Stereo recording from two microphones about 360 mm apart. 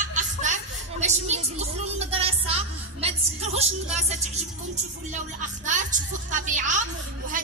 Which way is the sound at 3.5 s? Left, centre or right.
Centre.